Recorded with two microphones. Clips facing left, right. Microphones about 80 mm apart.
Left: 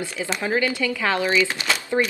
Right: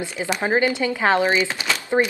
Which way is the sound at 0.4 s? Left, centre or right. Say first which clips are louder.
Right 3 dB; right.